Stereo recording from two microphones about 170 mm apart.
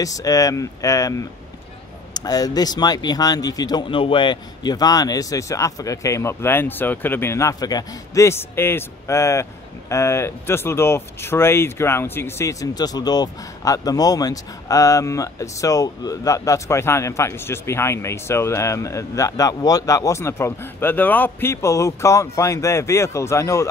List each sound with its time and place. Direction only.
0.0 s speech: 20° left (ahead or behind)